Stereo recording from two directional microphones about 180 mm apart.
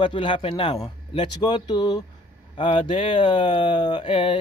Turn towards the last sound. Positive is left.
turn(degrees=25)  # may be behind; listen again after turning